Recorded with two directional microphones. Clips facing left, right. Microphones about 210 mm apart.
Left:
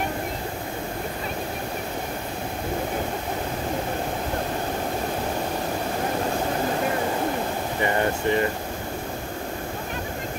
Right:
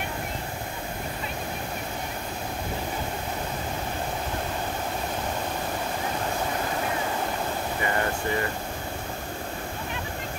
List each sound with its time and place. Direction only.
7.8 s air conditioning: 25° left (ahead or behind)